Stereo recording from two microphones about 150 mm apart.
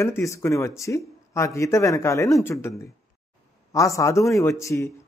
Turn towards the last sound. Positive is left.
turn(degrees=20)  # may be behind; listen again after turning